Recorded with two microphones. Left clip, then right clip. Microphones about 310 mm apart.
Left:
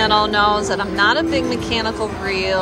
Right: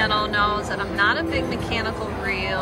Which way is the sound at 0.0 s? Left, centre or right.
Centre.